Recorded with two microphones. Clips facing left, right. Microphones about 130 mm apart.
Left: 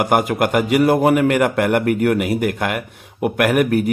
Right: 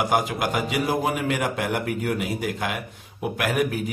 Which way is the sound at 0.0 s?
60° left (ahead or behind).